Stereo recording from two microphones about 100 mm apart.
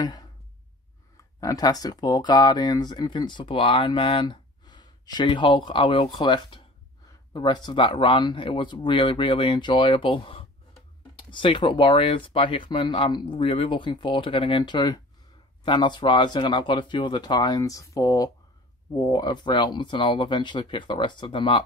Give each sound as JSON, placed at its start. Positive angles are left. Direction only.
{"t": 0.0, "sound": "speech", "side_deg": 45}